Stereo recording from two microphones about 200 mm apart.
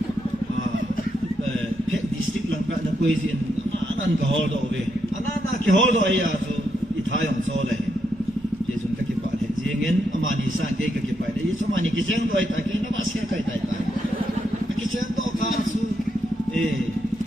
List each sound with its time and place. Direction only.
5.7 s a man's voice: 40° left (ahead or behind)